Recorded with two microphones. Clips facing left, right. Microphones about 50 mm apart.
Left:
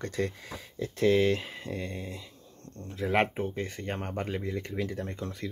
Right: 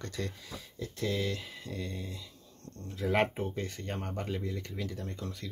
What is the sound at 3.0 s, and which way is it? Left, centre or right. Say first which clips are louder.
Speech: left 2 dB; left.